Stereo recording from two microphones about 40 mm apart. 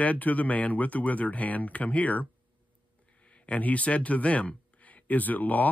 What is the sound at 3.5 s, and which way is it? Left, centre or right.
Speech, left.